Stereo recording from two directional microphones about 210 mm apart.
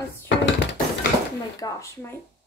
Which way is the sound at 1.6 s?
15° left (ahead or behind).